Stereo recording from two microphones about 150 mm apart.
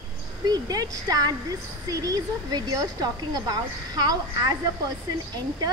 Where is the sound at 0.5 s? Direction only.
25° right (ahead or behind).